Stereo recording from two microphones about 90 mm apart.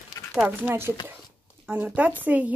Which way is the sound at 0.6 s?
25° right (ahead or behind).